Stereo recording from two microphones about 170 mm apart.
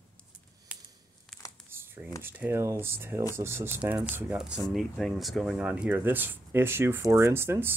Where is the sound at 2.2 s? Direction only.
10° right (ahead or behind).